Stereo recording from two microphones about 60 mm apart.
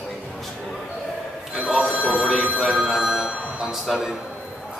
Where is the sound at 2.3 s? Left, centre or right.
Right.